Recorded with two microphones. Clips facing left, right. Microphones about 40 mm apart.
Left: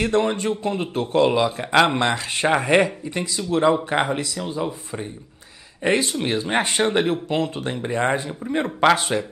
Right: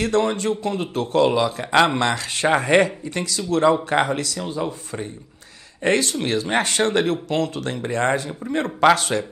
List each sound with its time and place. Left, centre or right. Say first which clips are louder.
0.0 s speech: even; centre
2.4 s speech: right 1 dB; centre
5.9 s a man's voice: right 1 dB; centre